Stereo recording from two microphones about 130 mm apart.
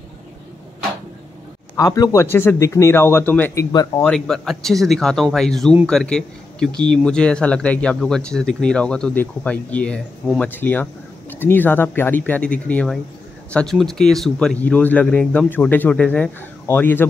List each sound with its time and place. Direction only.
1.8 s speech: 25° left (ahead or behind)
3.7 s speech: 30° left (ahead or behind)
4.0 s speech: 5° left (ahead or behind)